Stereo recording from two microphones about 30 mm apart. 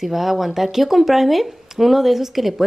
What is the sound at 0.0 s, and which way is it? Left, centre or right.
Speech, centre.